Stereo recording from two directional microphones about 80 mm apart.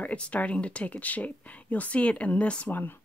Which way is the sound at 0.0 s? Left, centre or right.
Centre.